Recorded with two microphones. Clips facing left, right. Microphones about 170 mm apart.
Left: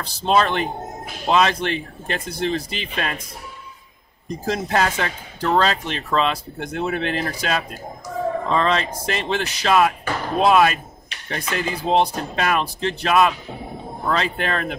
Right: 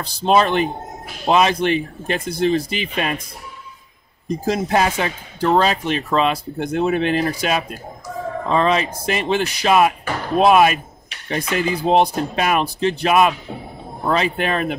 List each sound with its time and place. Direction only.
0.0 s speech: 15° right (ahead or behind)
4.5 s speech: 10° right (ahead or behind)